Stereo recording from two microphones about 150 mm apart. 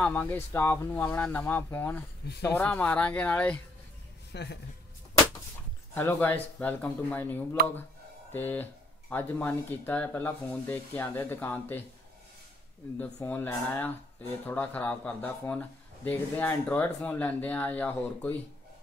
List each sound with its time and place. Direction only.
0.0 s speech: 10° left (ahead or behind)
4.3 s speech: 90° left
5.9 s speech: 15° left (ahead or behind)
13.0 s speech: 10° left (ahead or behind)